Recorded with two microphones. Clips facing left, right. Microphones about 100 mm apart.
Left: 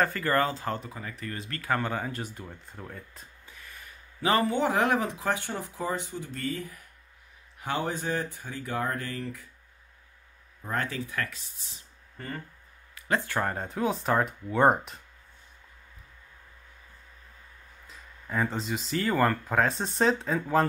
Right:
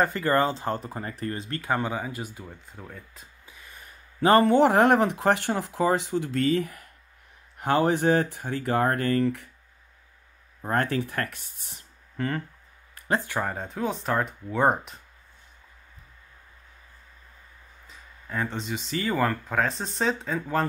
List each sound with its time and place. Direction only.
0.0 s speech: 25° right (ahead or behind)
1.9 s speech: 10° right (ahead or behind)
3.8 s a sound: 40° right (ahead or behind)
4.5 s speech: 65° right (ahead or behind)
7.5 s speech: 65° right (ahead or behind)
10.7 s speech: 60° right (ahead or behind)
12.2 s speech: 90° right
13.4 s speech: centre (ahead or behind)
17.8 s speech: centre (ahead or behind)